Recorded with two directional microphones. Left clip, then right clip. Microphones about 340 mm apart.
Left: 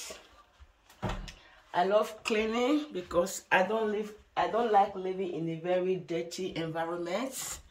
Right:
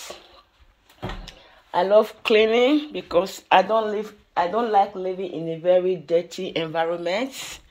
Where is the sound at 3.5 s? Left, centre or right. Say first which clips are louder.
Right 9 dB; right.